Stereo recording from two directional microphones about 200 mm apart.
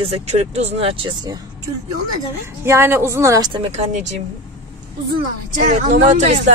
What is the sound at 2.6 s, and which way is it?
Speech, 10° right (ahead or behind).